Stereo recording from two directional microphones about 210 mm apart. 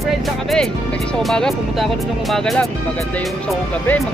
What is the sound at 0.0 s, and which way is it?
Speech, centre (ahead or behind).